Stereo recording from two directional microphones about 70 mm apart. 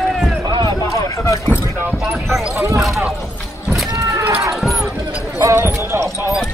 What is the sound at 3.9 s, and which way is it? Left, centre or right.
Run, right.